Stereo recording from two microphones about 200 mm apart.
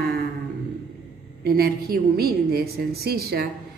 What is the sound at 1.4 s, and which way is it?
Speech, 50° right (ahead or behind).